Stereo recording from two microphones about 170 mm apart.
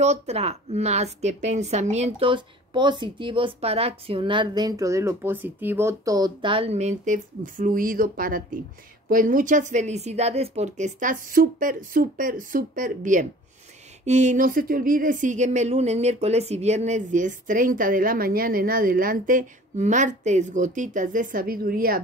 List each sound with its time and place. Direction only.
0.0 s a woman's voice: 40° right (ahead or behind); by 22.0 s 60° right (ahead or behind)